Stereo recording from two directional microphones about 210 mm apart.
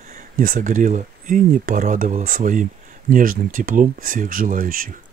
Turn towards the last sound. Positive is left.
turn(degrees=-40)  # may be behind; listen again after turning